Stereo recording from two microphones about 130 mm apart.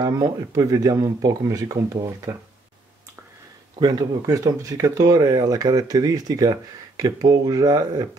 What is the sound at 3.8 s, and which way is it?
Speech, 30° right (ahead or behind).